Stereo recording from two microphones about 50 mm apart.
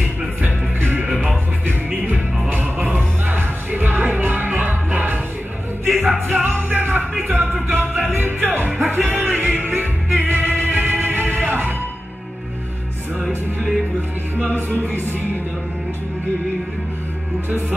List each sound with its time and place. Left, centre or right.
0.4 s music: right
2.5 s music: right
17.5 s music: right